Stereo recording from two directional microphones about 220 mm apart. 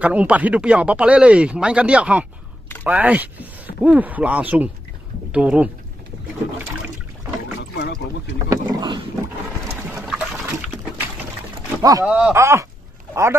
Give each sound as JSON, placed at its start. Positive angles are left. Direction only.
{"t": 0.0, "sound": "speech", "side_deg": -5}
{"t": 7.7, "sound": "a sound", "side_deg": 50}
{"t": 8.5, "sound": "boat", "side_deg": -20}
{"t": 9.7, "sound": "a sound", "side_deg": -10}
{"t": 10.0, "sound": "liquid", "side_deg": 0}
{"t": 11.8, "sound": "speech", "side_deg": -15}
{"t": 12.1, "sound": "speech", "side_deg": -5}